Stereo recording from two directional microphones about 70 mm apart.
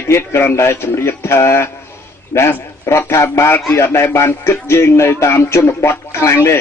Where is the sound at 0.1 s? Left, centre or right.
Left.